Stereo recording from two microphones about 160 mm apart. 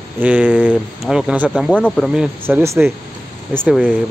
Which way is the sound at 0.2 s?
10° right (ahead or behind).